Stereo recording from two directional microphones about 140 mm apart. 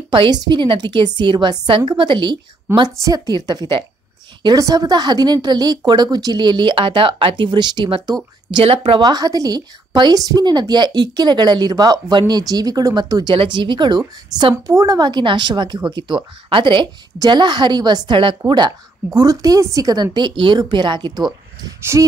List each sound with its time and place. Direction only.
0.1 s a woman's voice: 35° right (ahead or behind)
14.5 s a woman's voice: 20° right (ahead or behind)
21.6 s a woman's voice: 20° right (ahead or behind)